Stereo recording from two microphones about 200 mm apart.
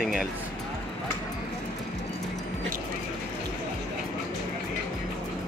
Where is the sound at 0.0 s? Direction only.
5° right (ahead or behind).